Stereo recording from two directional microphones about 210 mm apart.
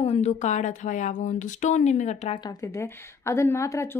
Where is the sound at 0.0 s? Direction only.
30° left (ahead or behind).